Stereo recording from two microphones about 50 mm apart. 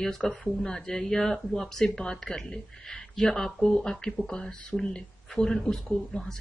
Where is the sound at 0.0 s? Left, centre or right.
Centre.